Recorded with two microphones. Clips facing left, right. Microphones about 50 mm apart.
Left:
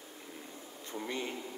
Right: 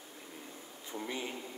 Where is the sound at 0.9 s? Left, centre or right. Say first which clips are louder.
Left 1 dB; centre.